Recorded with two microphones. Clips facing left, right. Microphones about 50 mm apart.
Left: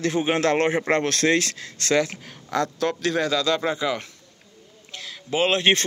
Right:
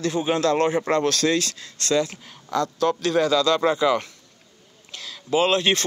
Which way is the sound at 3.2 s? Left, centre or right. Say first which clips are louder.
Right 4 dB; left.